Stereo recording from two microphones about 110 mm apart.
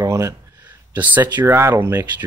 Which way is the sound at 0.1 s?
25° right (ahead or behind).